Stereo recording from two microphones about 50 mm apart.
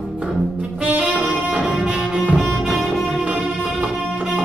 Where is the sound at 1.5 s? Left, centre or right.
Centre.